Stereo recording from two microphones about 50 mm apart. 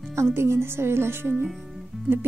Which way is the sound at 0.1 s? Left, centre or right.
Right.